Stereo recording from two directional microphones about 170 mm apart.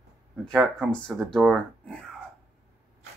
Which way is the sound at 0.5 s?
Centre (ahead or behind).